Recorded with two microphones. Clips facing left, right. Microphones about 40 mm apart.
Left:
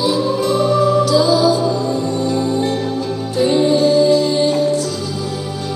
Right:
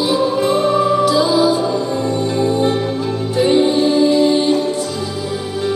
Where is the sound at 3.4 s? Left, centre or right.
Right.